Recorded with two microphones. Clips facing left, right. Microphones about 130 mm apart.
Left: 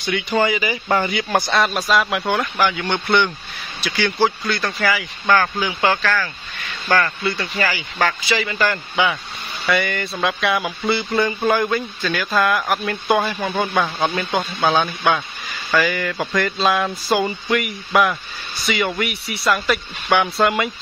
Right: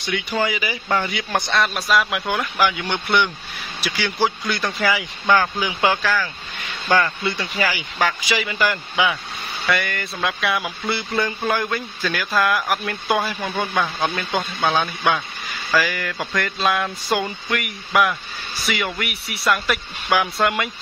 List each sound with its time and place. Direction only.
0.0 s a man's voice: centre (ahead or behind)